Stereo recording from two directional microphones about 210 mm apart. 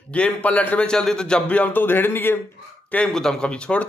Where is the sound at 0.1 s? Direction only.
5° left (ahead or behind).